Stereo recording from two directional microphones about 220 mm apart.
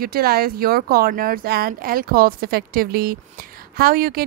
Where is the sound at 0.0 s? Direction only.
45° right (ahead or behind).